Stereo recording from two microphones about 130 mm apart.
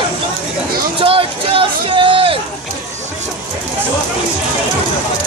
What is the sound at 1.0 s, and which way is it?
Speech, 45° right (ahead or behind).